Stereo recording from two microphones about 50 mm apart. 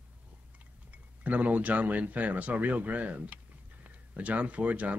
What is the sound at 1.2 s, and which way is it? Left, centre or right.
Speech, right.